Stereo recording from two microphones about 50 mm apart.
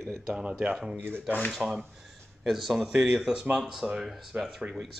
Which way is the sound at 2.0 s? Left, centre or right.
Centre.